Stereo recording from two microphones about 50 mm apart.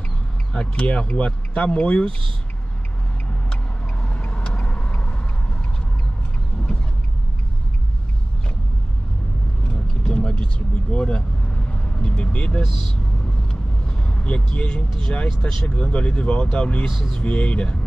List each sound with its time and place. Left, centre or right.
0.5 s speech: left
4.0 s vehicle: left
9.7 s vehicle: centre
15.2 s speech: centre